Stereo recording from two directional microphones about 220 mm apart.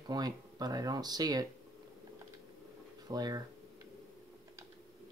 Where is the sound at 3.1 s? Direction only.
15° right (ahead or behind).